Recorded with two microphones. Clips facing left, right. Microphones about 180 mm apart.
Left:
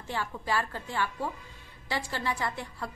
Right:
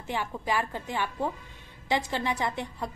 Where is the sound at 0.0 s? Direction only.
15° right (ahead or behind).